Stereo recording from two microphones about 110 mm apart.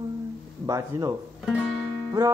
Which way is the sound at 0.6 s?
30° right (ahead or behind).